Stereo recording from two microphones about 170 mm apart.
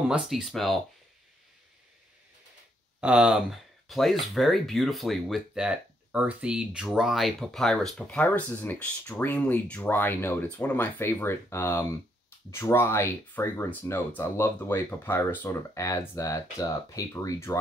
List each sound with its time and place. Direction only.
0.1 s speech: centre (ahead or behind)
3.0 s speech: 5° right (ahead or behind); by 17.6 s 15° left (ahead or behind)